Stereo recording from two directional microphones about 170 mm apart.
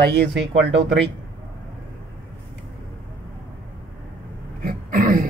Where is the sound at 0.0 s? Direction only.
85° right.